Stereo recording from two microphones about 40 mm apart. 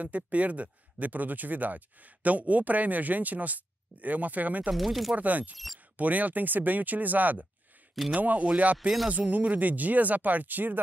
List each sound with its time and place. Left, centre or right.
0.0 s speech: right
4.7 s speech: centre
5.1 s speech: right